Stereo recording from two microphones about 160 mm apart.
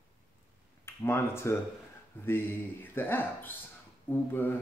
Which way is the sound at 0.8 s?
15° left (ahead or behind).